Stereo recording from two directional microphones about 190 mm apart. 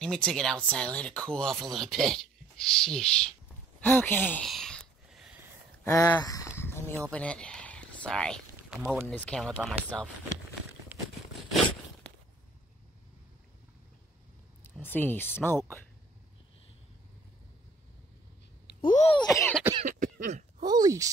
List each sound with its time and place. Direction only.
0.0 s speech: 5° left (ahead or behind)
3.8 s a sound: 10° left (ahead or behind)
5.9 s speech: 15° left (ahead or behind)
6.6 s a sound: 10° left (ahead or behind)
9.0 s speech: 5° left (ahead or behind)
10.9 s a sound: 10° right (ahead or behind)
14.6 s speech: 10° left (ahead or behind)
18.9 s speech: 35° left (ahead or behind)
19.1 s speech: 15° left (ahead or behind)
19.8 s throat clearing: 45° right (ahead or behind)
20.6 s speech: 20° right (ahead or behind)